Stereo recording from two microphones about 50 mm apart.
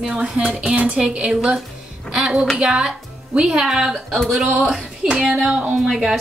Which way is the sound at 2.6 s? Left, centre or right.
Centre.